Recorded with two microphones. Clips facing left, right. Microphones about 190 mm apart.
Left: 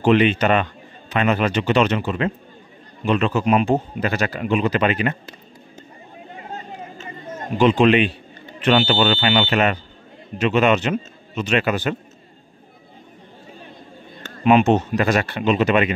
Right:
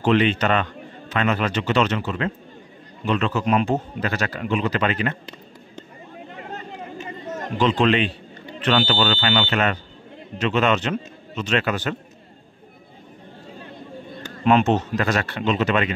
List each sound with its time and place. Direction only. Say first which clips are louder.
0.0 s speech: left 3 dB; 15° left (ahead or behind)
7.5 s a man's voice: left 4 dB; 15° left (ahead or behind)
14.4 s speech: left 3 dB; 10° left (ahead or behind)